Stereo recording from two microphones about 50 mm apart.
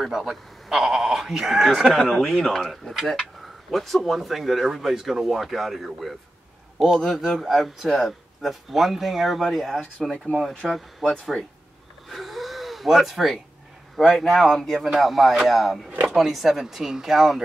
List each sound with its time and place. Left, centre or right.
0.1 s speech: centre
12.1 s gasp: centre
14.1 s speech: centre
15.9 s a sound: right
16.2 s speech: centre